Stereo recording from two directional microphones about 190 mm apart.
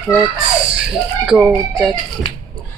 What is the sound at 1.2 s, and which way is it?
Speech, 5° right (ahead or behind).